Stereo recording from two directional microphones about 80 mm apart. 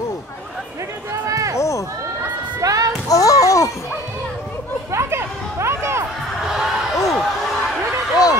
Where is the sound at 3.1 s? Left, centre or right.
Left.